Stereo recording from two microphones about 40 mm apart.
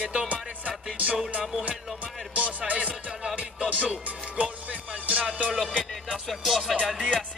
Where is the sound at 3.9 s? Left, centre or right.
Right.